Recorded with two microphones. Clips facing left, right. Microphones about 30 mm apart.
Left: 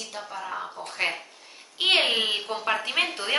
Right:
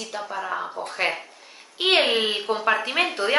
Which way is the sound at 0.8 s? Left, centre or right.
Centre.